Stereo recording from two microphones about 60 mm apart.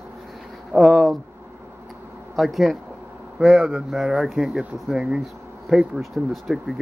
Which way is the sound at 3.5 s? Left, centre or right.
Centre.